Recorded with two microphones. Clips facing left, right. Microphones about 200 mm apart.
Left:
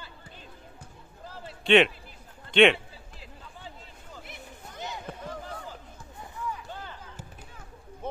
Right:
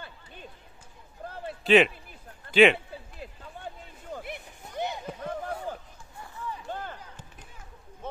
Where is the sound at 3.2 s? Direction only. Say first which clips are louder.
Right 3 dB; 55° right (ahead or behind).